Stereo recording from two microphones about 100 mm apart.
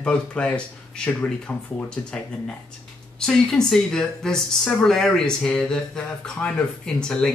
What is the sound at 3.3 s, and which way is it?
Speech, 5° left (ahead or behind).